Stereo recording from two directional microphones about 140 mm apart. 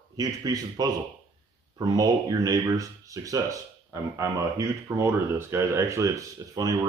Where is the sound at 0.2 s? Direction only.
25° right (ahead or behind).